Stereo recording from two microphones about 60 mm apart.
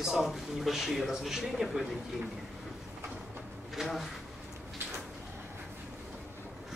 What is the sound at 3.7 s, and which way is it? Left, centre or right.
Speech, centre.